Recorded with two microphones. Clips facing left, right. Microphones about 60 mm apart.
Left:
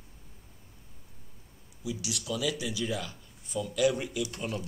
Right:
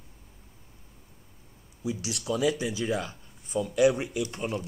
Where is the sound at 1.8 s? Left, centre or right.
Right.